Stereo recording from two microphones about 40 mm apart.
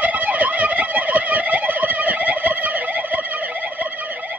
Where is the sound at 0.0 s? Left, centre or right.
Right.